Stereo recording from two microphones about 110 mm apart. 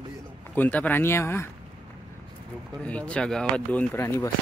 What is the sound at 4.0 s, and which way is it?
Speech, 25° left (ahead or behind).